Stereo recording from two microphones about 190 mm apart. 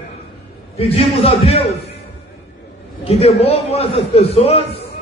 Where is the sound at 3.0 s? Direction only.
30° left (ahead or behind).